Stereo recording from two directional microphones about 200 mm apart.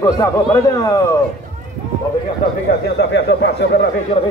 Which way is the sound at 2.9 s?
55° left (ahead or behind).